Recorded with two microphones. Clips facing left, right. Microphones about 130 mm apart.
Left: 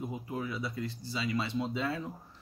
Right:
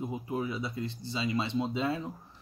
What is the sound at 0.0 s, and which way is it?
Speech, 20° right (ahead or behind).